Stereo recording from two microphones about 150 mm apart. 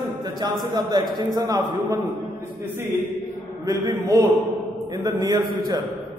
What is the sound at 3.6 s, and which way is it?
A man's voice, 25° right (ahead or behind).